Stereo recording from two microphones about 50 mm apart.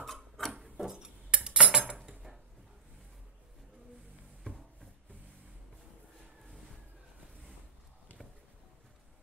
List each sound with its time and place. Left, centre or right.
0.0 s wood: centre
0.5 s cutlery: centre
4.5 s a sound: left